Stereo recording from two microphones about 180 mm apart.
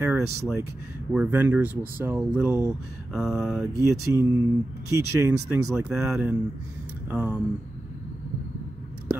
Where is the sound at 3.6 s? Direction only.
15° right (ahead or behind).